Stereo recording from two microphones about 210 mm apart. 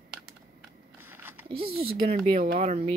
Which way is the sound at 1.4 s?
25° right (ahead or behind).